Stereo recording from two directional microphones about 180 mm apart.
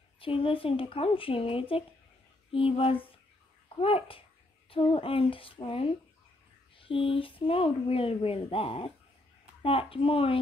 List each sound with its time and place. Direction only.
0.2 s a child's voice: 30° left (ahead or behind)